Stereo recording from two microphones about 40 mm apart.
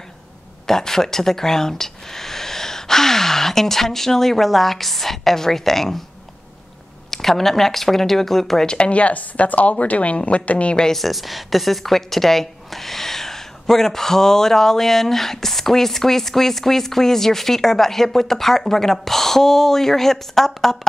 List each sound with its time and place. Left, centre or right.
0.7 s a woman's voice: centre
7.1 s a woman's voice: centre
8.6 s a woman's voice: left
11.0 s a woman's voice: centre